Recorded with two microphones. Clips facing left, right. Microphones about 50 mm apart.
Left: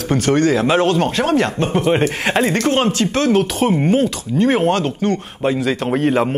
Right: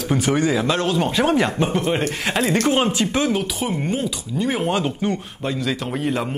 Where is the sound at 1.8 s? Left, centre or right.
Left.